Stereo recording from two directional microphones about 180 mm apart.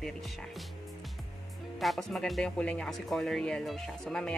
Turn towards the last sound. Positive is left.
turn(degrees=5)  # may be behind; listen again after turning